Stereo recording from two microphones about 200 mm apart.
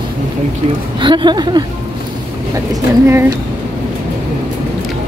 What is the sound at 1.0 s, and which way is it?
Speech, 25° right (ahead or behind).